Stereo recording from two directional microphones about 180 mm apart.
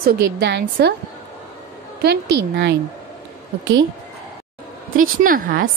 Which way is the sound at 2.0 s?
70° right (ahead or behind).